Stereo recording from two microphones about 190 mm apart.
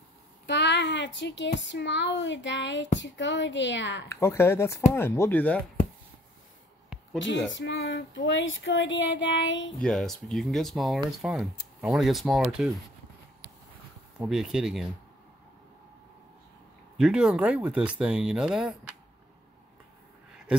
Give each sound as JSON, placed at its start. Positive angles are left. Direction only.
{"t": 0.5, "sound": "a sound", "side_deg": 65}
{"t": 1.6, "sound": "speech", "side_deg": 70}
{"t": 4.1, "sound": "speech", "side_deg": 15}
{"t": 7.5, "sound": "female singing", "side_deg": 75}
{"t": 9.8, "sound": "speech", "side_deg": 5}
{"t": 14.1, "sound": "speech", "side_deg": -5}
{"t": 17.0, "sound": "speech", "side_deg": -5}